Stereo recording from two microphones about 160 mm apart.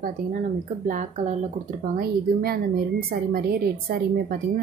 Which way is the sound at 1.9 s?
70° right (ahead or behind).